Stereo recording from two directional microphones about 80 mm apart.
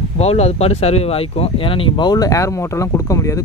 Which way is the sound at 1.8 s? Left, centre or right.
Left.